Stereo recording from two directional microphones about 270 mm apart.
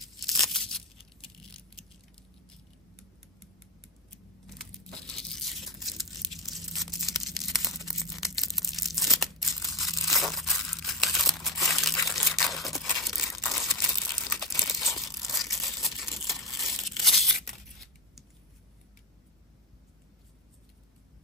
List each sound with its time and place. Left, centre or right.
0.0 s tearing: centre
4.7 s crumpling: centre
17.1 s tearing: left